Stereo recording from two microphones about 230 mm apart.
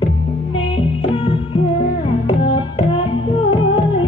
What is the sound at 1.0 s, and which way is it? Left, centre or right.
Music, left.